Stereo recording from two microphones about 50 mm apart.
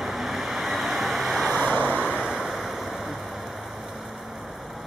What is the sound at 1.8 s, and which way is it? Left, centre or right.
Vehicle, right.